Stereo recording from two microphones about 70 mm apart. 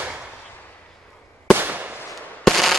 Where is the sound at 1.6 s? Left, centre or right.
Right.